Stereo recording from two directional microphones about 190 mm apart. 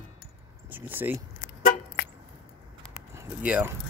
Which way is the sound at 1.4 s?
45° left (ahead or behind).